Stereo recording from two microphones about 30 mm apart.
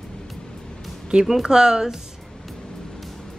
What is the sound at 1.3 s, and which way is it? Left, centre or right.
Speech, centre.